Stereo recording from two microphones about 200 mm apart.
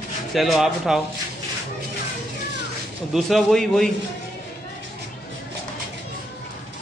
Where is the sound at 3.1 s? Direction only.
Centre (ahead or behind).